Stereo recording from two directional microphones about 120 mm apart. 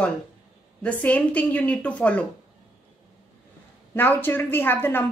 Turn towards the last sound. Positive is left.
turn(degrees=15)  # may be behind; listen again after turning